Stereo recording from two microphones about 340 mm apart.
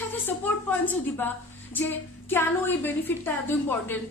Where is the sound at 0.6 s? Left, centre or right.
Centre.